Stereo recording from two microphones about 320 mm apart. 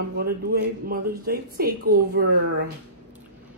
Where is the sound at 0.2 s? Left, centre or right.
Right.